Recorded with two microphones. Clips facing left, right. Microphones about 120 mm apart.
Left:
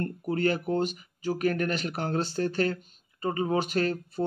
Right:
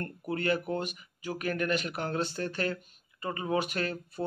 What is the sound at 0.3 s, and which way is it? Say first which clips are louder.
Speech: left 3 dB; 35° left (ahead or behind).